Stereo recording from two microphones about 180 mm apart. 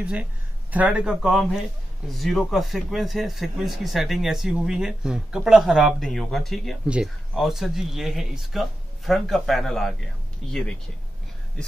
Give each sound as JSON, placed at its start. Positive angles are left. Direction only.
{"t": 0.0, "sound": "speech", "side_deg": -5}
{"t": 10.4, "sound": "speech", "side_deg": -35}